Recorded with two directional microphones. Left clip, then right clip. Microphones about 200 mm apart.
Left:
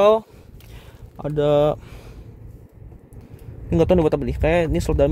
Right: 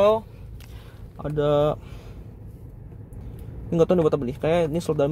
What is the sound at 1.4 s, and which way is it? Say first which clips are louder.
Speech: left 4 dB; 35° left (ahead or behind).